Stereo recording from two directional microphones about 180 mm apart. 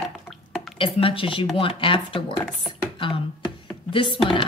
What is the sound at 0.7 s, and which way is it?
A woman's voice, 30° left (ahead or behind).